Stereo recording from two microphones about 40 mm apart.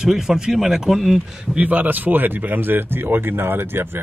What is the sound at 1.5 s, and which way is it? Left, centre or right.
Speech, right.